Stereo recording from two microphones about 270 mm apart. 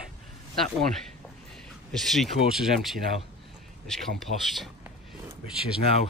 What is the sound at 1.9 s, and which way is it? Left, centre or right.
Speech, centre.